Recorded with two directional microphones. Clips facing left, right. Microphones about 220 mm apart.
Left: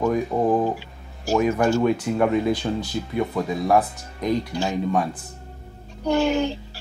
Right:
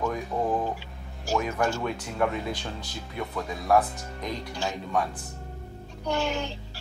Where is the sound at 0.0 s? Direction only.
35° left (ahead or behind).